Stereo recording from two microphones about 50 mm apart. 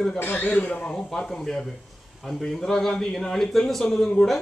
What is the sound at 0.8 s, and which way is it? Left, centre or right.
A man's voice, centre.